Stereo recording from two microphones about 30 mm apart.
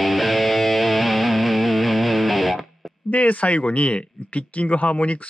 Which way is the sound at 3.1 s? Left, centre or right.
Left.